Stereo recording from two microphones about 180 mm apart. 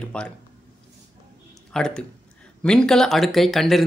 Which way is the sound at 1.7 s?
5° left (ahead or behind).